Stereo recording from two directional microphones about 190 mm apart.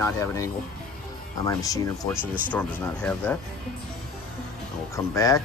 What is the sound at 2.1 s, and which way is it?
Speech, 10° right (ahead or behind).